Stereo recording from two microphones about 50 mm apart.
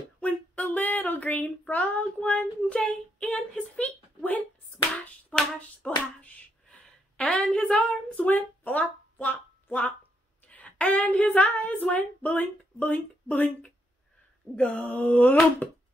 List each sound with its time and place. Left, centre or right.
0.2 s a sound: left
1.7 s a child's voice: left
3.8 s a sound: left
5.3 s hands: left
7.7 s a child's voice: left
8.3 s speech: left
10.5 s a sound: left
14.8 s a child's voice: left
15.6 s speech: left